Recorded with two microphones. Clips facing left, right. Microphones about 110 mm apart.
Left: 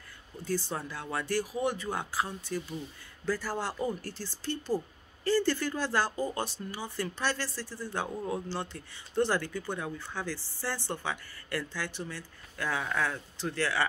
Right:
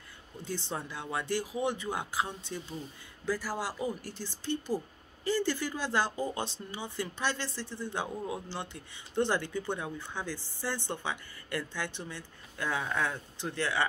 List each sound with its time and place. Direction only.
0.5 s speech: 20° right (ahead or behind)
3.3 s speech: 10° right (ahead or behind)